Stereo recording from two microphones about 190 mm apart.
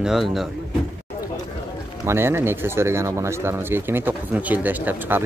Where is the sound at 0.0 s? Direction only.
Centre (ahead or behind).